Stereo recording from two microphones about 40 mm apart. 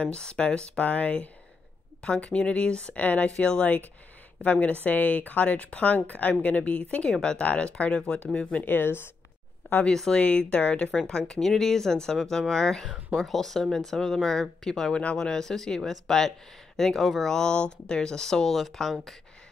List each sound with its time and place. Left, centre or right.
0.0 s speech: left
0.8 s speech: left
4.4 s speech: left
7.1 s speech: left
8.6 s a woman's voice: left
10.1 s speech: left
10.9 s speech: centre
14.9 s speech: left
15.1 s speech: centre